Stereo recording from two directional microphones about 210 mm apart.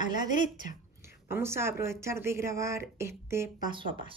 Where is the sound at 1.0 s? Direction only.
10° right (ahead or behind).